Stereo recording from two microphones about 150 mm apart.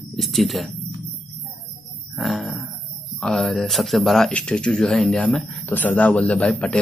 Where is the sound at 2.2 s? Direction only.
Centre (ahead or behind).